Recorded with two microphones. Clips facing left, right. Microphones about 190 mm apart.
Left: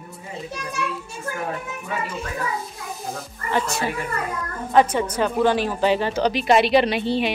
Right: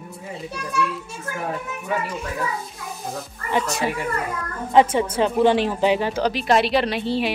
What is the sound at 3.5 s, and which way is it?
A woman's voice, 20° right (ahead or behind).